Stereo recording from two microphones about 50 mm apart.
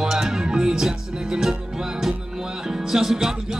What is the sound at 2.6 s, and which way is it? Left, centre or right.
Music, centre.